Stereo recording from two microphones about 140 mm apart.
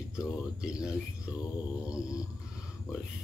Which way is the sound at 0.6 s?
5° right (ahead or behind).